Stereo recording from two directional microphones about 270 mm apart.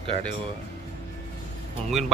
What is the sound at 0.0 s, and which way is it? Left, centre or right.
Speech, right.